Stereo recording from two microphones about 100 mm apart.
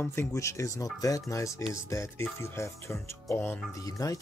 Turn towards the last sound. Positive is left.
turn(degrees=35)  # may be behind; listen again after turning